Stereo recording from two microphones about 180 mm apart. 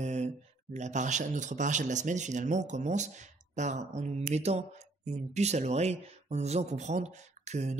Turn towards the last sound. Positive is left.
turn(degrees=-40)  # may be behind; listen again after turning